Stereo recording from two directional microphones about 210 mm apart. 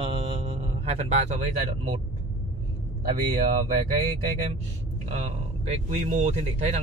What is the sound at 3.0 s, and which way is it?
A man's voice, 40° right (ahead or behind).